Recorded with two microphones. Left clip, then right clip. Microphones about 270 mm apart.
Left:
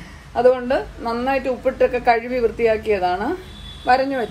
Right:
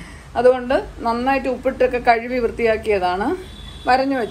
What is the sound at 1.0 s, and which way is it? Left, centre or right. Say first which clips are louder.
Speech: right 2 dB; right.